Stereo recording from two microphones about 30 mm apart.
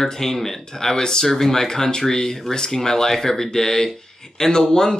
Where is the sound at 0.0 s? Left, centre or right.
Centre.